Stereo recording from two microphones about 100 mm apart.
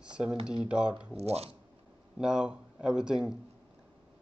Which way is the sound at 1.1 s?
90° right.